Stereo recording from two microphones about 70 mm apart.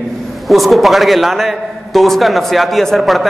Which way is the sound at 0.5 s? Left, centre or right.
Centre.